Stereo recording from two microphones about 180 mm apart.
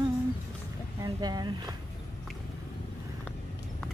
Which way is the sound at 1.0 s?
20° right (ahead or behind).